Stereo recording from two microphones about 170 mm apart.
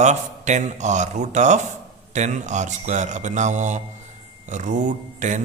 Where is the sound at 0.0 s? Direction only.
45° right (ahead or behind).